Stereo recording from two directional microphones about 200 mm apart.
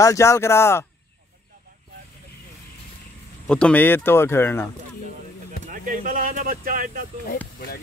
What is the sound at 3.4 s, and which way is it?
Speech, 5° left (ahead or behind).